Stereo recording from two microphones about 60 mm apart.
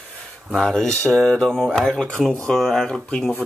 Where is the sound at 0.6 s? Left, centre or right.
Centre.